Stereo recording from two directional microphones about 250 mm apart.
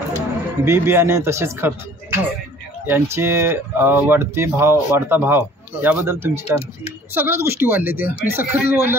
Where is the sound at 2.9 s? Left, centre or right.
Centre.